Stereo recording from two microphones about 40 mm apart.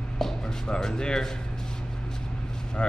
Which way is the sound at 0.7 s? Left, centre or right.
Centre.